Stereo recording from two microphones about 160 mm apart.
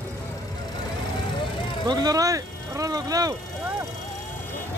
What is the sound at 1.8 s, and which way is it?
Vehicle, 25° right (ahead or behind).